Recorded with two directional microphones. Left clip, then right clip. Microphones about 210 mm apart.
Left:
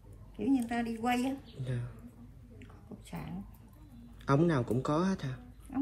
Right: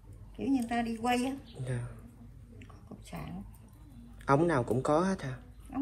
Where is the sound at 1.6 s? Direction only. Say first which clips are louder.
Right 2 dB; 20° left (ahead or behind).